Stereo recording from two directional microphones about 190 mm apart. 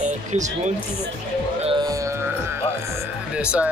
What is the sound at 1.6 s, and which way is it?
Music, 20° right (ahead or behind).